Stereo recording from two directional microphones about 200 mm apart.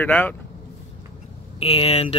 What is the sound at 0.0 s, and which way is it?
Speech, 10° left (ahead or behind).